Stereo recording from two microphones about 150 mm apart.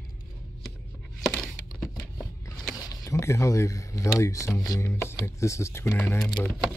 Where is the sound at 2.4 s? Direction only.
25° left (ahead or behind).